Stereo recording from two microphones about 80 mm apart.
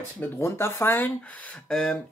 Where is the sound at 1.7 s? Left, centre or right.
Centre.